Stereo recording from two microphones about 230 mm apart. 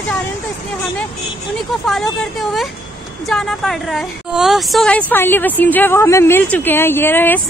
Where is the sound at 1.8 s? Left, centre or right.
Centre.